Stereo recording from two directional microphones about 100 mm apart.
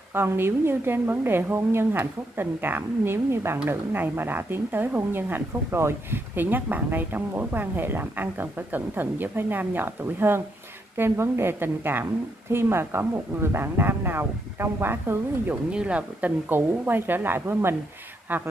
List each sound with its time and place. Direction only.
0.1 s speech: 20° right (ahead or behind)